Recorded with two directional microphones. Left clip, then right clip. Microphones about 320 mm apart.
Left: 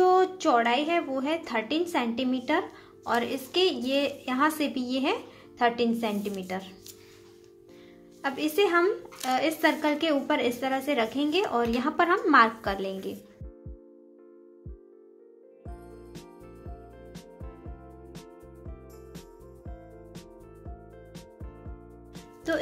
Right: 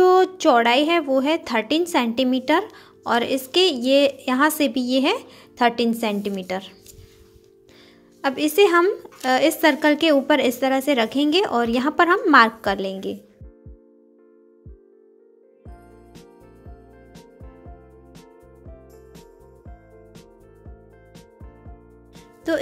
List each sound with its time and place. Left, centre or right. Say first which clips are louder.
0.0 s a woman's voice: right 6 dB; right
8.2 s a woman's voice: right 8 dB; right
15.6 s music: left 1 dB; centre